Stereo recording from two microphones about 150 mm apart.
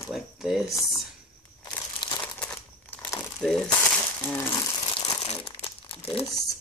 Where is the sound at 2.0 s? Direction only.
30° left (ahead or behind).